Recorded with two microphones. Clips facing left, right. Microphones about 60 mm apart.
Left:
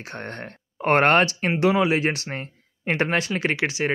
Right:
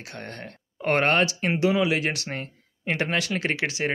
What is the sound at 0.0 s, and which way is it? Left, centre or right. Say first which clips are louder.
Speech: left 4 dB; left.